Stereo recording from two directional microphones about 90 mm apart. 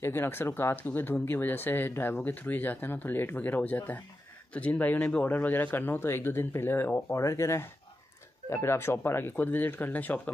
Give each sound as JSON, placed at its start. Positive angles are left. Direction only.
{"t": 0.0, "sound": "speech", "side_deg": 25}